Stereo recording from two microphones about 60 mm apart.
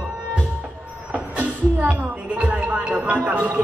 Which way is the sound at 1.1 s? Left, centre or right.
Right.